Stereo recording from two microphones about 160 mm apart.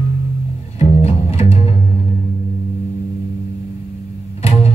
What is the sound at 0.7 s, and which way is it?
Music, 40° left (ahead or behind).